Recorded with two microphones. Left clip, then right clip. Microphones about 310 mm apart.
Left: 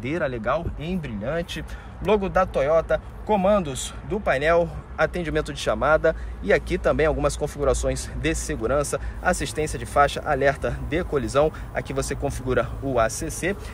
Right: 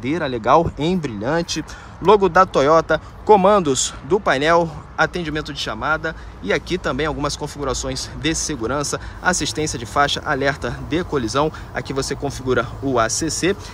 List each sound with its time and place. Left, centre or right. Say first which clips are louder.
0.0 s speech: right 4 dB; centre